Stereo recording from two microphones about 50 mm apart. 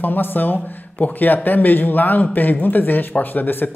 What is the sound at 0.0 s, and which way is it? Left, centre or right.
Speech, left.